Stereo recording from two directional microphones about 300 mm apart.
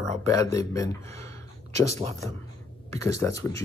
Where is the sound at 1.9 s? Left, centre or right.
Right.